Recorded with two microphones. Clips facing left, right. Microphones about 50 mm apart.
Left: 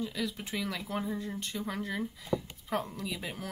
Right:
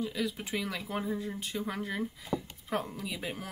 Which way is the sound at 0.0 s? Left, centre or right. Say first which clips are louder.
Right 1 dB; centre.